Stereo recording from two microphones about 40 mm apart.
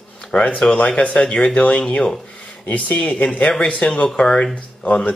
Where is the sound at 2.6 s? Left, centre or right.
Left.